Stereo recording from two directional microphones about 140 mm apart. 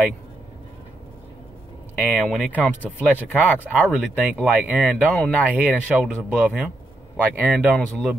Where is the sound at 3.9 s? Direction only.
5° right (ahead or behind).